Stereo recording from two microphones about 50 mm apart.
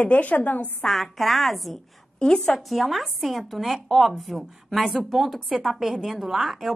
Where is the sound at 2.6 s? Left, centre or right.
Centre.